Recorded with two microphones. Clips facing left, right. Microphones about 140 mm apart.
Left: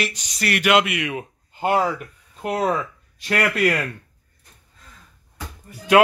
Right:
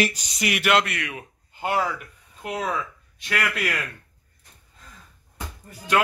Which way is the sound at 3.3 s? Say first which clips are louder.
Left 7 dB; 35° left (ahead or behind).